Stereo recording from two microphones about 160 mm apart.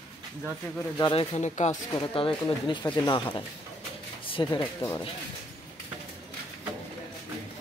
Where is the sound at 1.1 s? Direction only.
45° left (ahead or behind).